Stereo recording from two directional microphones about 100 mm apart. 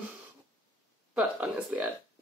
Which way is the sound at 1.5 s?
15° right (ahead or behind).